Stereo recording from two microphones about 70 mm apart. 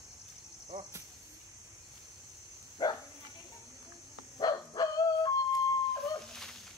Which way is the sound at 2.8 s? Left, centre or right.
Left.